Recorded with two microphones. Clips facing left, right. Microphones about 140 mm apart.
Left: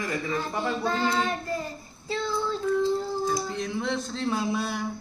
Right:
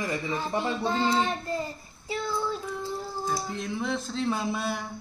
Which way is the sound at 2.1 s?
15° right (ahead or behind).